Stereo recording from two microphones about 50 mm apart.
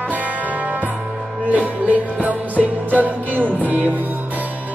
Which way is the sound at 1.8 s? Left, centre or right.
Right.